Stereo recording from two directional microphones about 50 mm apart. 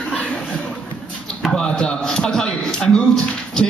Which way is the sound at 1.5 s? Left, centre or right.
Centre.